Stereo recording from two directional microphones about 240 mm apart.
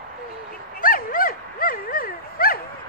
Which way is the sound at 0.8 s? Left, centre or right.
Left.